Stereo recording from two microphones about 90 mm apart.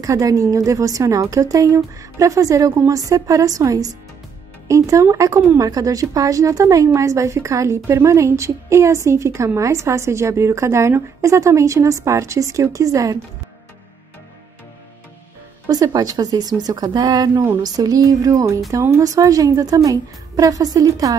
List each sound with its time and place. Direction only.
0.0 s a woman's voice: 40° right (ahead or behind)
15.7 s a woman's voice: 45° right (ahead or behind)